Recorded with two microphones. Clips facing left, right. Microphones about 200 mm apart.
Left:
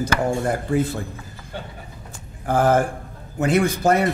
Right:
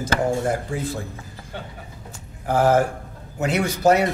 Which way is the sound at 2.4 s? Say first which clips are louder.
Even; 50° left (ahead or behind).